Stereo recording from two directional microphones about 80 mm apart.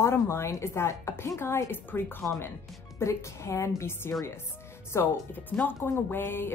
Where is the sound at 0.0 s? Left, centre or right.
Left.